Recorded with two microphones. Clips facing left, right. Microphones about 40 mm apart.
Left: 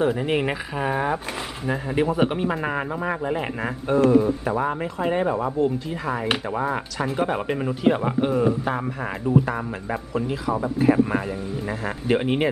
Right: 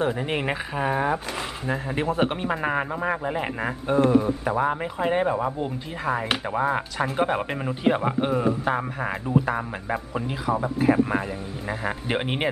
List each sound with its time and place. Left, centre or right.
0.0 s speech: centre
11.8 s speech: centre